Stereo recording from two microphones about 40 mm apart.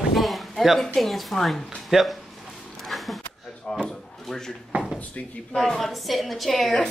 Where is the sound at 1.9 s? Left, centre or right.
Centre.